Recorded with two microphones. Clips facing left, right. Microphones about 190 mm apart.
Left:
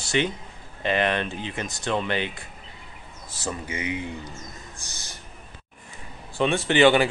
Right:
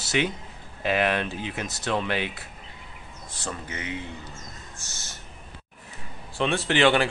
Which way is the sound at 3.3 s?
10° left (ahead or behind).